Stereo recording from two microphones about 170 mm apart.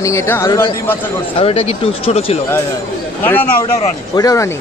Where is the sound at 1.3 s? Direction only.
35° left (ahead or behind).